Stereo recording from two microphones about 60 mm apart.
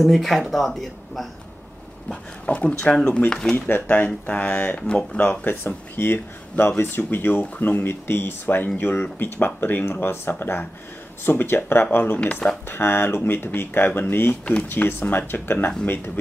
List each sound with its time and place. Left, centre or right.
0.0 s speech: centre
2.4 s speech: left
3.3 s speech: centre
3.5 s speech: left; by 5.2 s centre
5.2 s speech: left
12.6 s speech: left
14.4 s speech: centre
14.7 s speech: left